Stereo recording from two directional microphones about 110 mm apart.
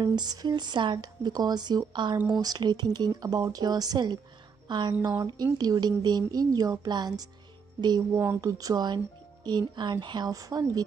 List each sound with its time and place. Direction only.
0.0 s speech: 40° right (ahead or behind)